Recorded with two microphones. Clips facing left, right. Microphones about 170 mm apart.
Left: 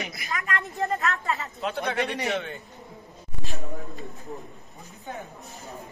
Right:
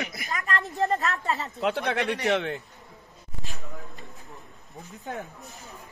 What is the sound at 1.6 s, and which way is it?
Speech, 75° right (ahead or behind).